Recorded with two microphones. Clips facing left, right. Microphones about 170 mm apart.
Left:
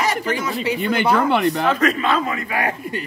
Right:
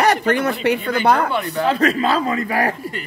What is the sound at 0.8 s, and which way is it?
Speech, 70° left (ahead or behind).